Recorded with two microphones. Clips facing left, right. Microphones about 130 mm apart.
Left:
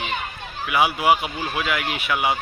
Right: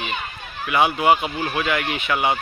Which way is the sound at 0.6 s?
5° left (ahead or behind).